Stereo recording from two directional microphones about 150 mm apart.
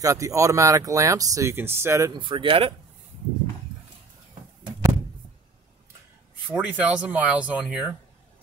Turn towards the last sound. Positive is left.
turn(degrees=-10)  # may be behind; listen again after turning